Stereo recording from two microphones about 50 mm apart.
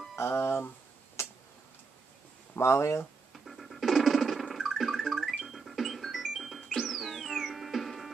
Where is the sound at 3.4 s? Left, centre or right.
Centre.